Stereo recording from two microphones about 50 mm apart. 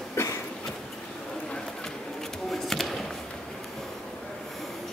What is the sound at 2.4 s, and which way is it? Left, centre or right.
Chop, centre.